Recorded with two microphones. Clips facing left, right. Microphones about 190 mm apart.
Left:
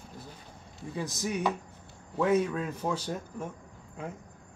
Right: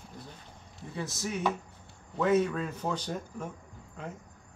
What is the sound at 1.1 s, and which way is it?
Speech, 15° left (ahead or behind).